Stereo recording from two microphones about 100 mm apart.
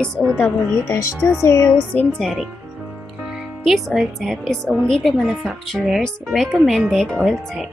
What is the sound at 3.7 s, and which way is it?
Speech, centre (ahead or behind).